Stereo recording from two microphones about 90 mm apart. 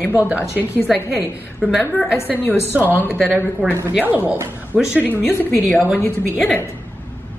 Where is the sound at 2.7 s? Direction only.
20° right (ahead or behind).